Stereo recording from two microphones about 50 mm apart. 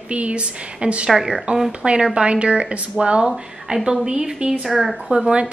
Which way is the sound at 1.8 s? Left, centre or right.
Right.